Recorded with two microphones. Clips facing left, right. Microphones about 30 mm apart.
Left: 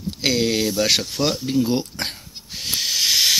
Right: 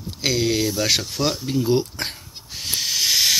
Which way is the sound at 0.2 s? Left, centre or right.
Left.